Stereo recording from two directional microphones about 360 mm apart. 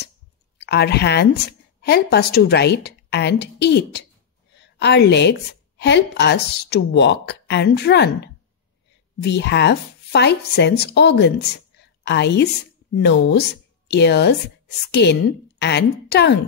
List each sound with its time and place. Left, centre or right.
0.6 s a woman's voice: left